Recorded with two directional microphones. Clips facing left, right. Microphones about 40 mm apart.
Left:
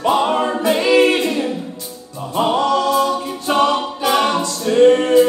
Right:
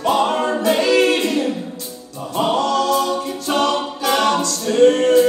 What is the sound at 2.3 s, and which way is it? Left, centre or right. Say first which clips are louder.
Music: left 2 dB; centre.